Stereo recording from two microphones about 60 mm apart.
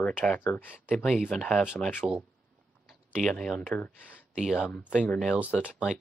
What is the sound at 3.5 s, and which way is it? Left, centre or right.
Speech, left.